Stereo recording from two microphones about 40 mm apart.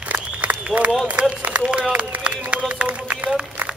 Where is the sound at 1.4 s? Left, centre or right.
Right.